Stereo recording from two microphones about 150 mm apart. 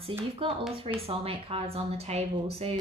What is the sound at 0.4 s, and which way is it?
A woman's voice, 40° right (ahead or behind).